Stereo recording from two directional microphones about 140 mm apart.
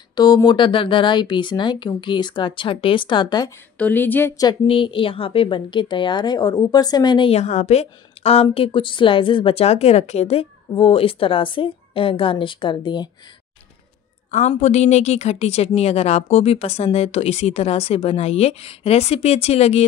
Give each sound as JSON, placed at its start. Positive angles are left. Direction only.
{"t": 0.1, "sound": "a woman's voice", "side_deg": 30}
{"t": 3.7, "sound": "speech", "side_deg": 10}
{"t": 4.4, "sound": "a woman's voice", "side_deg": 35}
{"t": 7.3, "sound": "a woman's voice", "side_deg": 55}
{"t": 14.6, "sound": "speech", "side_deg": 55}